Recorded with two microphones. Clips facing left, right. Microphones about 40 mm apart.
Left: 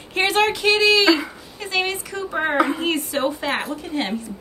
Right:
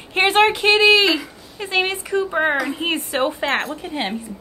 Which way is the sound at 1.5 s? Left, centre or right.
Centre.